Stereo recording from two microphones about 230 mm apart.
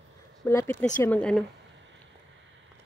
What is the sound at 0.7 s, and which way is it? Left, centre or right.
Speech, left.